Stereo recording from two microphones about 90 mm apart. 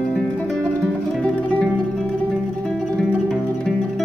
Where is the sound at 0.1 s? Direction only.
10° left (ahead or behind).